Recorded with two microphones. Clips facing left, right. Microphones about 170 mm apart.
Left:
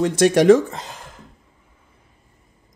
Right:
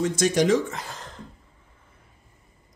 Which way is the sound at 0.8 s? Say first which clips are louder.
Left 1 dB; 10° left (ahead or behind).